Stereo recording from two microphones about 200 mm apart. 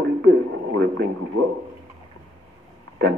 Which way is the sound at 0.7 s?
60° right (ahead or behind).